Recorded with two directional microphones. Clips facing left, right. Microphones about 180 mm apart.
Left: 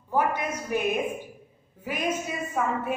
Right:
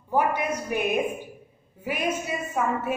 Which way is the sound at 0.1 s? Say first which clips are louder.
Right 2 dB; 10° right (ahead or behind).